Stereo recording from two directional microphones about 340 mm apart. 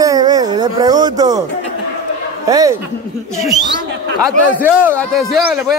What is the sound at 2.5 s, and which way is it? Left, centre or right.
Speech, centre.